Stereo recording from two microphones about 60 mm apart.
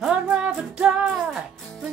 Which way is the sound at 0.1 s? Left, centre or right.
Centre.